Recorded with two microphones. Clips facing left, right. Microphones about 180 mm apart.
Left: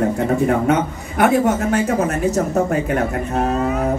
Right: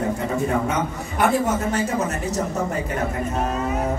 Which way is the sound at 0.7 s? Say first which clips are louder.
Left 6 dB; 55° left (ahead or behind).